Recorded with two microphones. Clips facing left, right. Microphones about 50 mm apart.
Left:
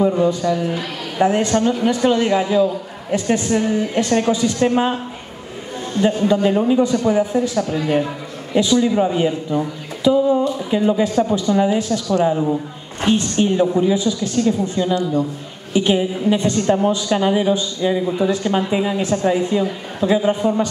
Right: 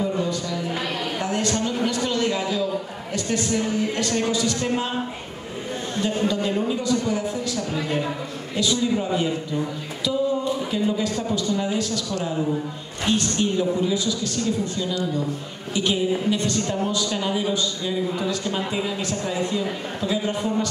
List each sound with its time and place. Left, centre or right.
0.2 s a man's voice: left
6.0 s a man's voice: left